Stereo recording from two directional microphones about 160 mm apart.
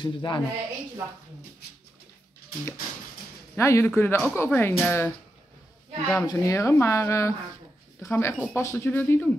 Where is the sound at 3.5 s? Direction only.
15° left (ahead or behind).